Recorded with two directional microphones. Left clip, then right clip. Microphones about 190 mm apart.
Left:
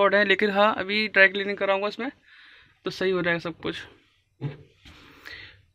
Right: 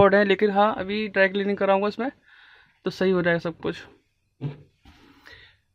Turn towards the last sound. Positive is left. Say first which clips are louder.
# left 6 dB
turn(degrees=-10)  # may be behind; listen again after turning